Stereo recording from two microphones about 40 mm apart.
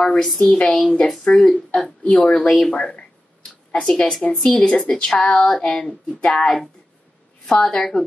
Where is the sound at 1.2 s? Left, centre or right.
Centre.